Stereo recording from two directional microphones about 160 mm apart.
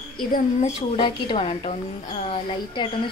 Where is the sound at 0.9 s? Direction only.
30° left (ahead or behind).